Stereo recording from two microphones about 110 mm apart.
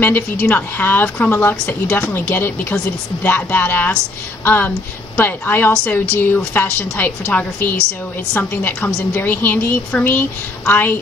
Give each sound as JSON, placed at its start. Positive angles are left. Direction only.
{"t": 0.0, "sound": "a woman's voice", "side_deg": 15}